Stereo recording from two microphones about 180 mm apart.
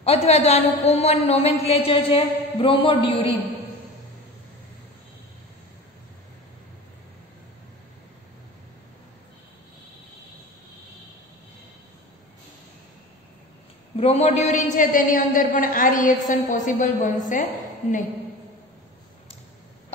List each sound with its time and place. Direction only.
0.0 s a woman's voice: 35° left (ahead or behind)
13.9 s a woman's voice: 35° left (ahead or behind)